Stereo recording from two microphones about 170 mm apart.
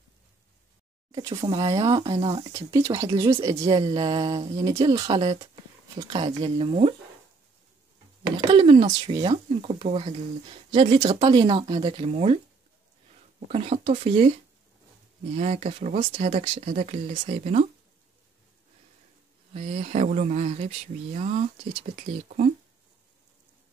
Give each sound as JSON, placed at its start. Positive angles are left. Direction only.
{"t": 1.5, "sound": "speech", "side_deg": -25}
{"t": 2.5, "sound": "speech", "side_deg": -15}
{"t": 8.4, "sound": "speech", "side_deg": -30}
{"t": 13.5, "sound": "speech", "side_deg": -35}
{"t": 19.5, "sound": "speech", "side_deg": -40}